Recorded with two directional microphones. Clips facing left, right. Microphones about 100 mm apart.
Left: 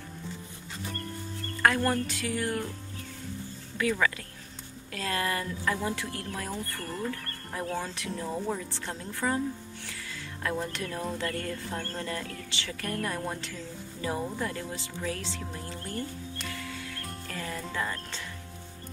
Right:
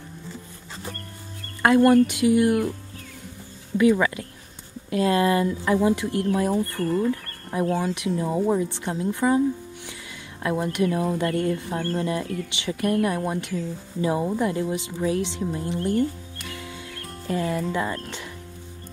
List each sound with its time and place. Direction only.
1.6 s speech: 20° right (ahead or behind)
3.7 s speech: 20° right (ahead or behind)
10.4 s speech: 15° right (ahead or behind)
16.3 s music: 15° right (ahead or behind)
17.3 s speech: 20° right (ahead or behind)